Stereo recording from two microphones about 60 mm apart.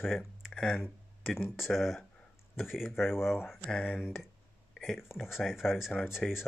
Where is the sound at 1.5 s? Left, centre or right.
Centre.